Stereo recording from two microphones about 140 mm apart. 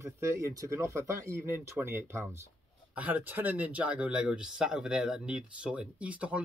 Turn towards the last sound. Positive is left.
turn(degrees=-10)  # may be behind; listen again after turning